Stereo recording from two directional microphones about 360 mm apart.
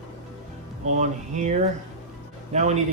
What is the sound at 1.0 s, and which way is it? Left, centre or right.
Speech, centre.